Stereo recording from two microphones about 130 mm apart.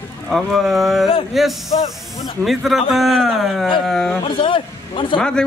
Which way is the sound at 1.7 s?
50° left (ahead or behind).